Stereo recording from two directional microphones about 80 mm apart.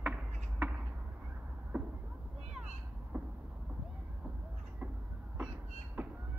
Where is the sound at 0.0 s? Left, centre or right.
Centre.